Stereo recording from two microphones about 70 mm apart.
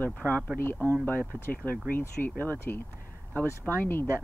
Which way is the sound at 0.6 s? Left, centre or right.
Left.